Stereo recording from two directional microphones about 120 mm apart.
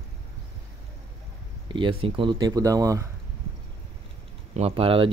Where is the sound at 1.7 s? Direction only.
45° right (ahead or behind); by 3.0 s 25° right (ahead or behind).